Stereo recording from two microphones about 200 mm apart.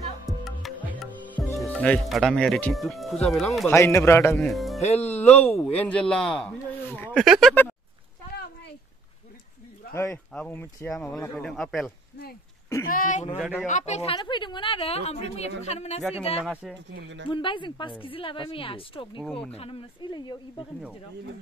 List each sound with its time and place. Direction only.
0.5 s music: centre (ahead or behind)
1.7 s speech: 5° left (ahead or behind)
3.6 s speech: 15° left (ahead or behind)
4.5 s speech: centre (ahead or behind)
4.9 s a woman's voice: 35° left (ahead or behind)
5.6 s speech: 5° left (ahead or behind)
9.9 s speech: 10° left (ahead or behind)
12.9 s a woman's voice: 40° left (ahead or behind)
16.9 s speech: 65° right (ahead or behind)
17.3 s a woman's voice: 25° left (ahead or behind)